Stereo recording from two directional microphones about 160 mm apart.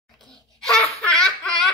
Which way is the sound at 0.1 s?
Centre (ahead or behind).